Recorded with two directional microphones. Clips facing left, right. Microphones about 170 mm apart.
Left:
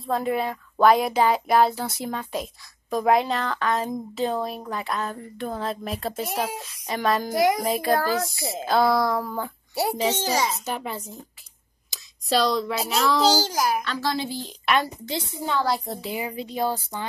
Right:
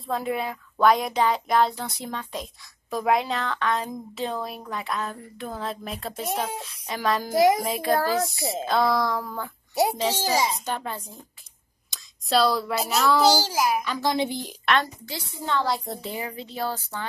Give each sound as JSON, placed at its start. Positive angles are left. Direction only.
{"t": 0.0, "sound": "a child's voice", "side_deg": 0}
{"t": 7.3, "sound": "speech", "side_deg": -25}
{"t": 7.6, "sound": "a child's voice", "side_deg": 0}
{"t": 8.0, "sound": "speech", "side_deg": -25}
{"t": 8.6, "sound": "a child's voice", "side_deg": 5}
{"t": 10.6, "sound": "a child's voice", "side_deg": 5}
{"t": 15.0, "sound": "a woman's voice", "side_deg": 20}
{"t": 15.4, "sound": "a child's voice", "side_deg": 5}
{"t": 16.2, "sound": "speech", "side_deg": 15}